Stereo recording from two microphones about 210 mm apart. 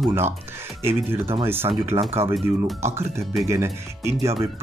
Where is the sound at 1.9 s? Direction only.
25° right (ahead or behind).